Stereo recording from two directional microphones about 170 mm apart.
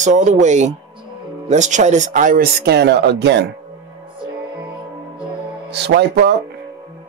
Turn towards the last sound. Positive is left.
turn(degrees=-80)